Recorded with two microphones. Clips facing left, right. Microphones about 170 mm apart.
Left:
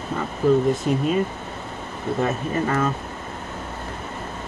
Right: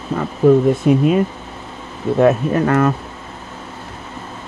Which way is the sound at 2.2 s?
65° right (ahead or behind).